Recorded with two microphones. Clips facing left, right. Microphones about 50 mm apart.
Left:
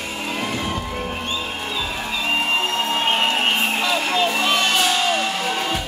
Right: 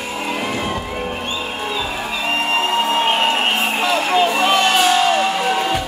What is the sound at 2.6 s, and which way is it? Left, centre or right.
Music, centre.